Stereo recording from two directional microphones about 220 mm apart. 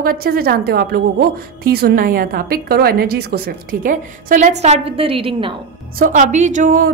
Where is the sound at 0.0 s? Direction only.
40° right (ahead or behind); by 5.5 s 25° right (ahead or behind).